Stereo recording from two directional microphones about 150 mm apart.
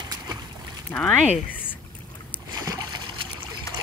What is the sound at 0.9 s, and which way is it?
Speech, 10° left (ahead or behind).